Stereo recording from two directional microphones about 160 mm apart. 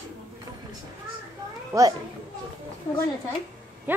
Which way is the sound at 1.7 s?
20° right (ahead or behind).